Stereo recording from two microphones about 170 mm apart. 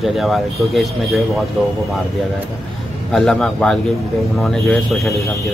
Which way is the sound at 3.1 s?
5° left (ahead or behind).